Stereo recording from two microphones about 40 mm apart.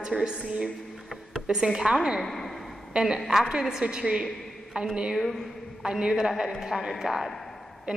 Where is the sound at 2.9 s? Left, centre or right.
Centre.